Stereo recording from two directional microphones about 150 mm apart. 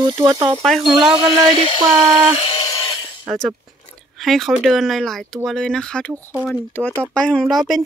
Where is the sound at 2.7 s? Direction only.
30° left (ahead or behind).